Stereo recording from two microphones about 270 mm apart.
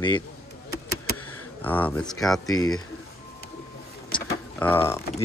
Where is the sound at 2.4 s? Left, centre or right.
Centre.